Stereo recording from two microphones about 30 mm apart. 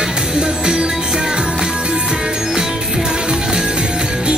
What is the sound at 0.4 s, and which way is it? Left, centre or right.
Music, right.